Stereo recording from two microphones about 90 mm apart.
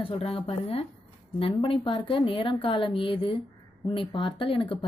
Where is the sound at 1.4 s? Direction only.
80° left.